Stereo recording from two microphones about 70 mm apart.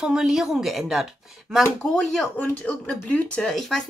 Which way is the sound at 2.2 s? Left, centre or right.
Left.